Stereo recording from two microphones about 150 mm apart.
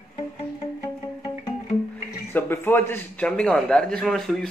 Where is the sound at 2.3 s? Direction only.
15° left (ahead or behind).